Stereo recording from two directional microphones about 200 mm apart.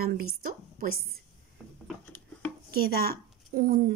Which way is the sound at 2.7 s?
50° right (ahead or behind).